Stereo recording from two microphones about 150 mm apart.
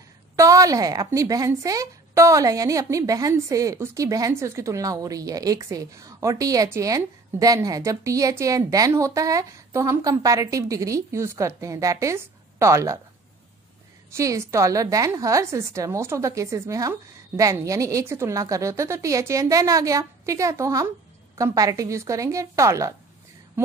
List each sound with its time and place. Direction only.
0.4 s a woman's voice: 20° right (ahead or behind)
14.1 s a woman's voice: 20° right (ahead or behind)